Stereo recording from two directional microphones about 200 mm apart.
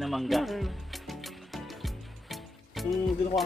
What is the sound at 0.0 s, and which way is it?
Music, centre (ahead or behind).